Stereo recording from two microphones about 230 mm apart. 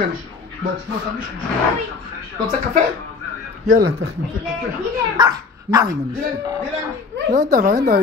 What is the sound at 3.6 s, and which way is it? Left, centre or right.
Speech, right.